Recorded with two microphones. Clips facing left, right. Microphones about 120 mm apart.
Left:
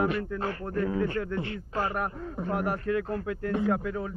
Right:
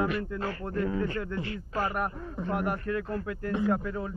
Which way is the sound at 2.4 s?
Centre (ahead or behind).